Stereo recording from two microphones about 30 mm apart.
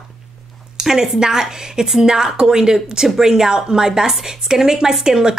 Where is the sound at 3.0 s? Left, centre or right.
Centre.